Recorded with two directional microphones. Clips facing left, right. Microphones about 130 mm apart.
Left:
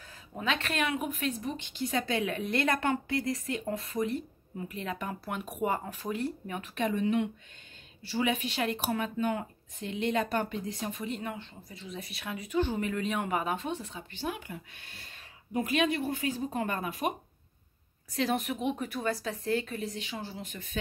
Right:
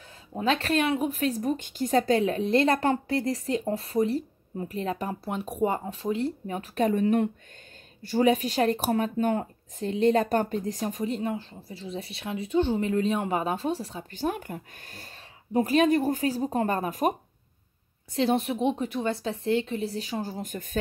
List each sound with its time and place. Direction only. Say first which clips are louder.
0.3 s speech: right 7 dB; 35° right (ahead or behind)
18.1 s speech: right 5 dB; 30° right (ahead or behind); by 20.7 s 45° right (ahead or behind)